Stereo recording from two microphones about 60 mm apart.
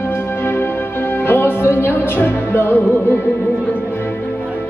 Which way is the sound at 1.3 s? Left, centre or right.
Left.